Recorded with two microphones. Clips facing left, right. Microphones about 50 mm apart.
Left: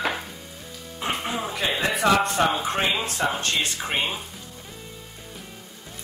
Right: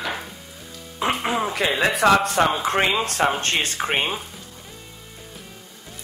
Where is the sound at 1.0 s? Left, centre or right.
Right.